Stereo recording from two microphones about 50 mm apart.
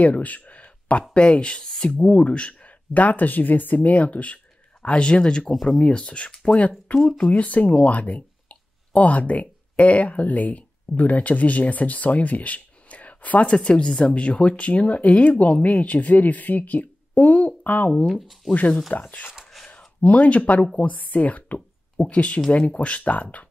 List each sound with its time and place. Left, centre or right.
0.0 s a sound: left
1.1 s speech: left
1.7 s speech: centre
2.0 s speech: left
5.5 s speech: centre
5.9 s speech: left
13.6 s speech: centre